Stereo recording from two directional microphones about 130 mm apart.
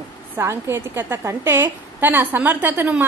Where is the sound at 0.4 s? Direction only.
20° right (ahead or behind).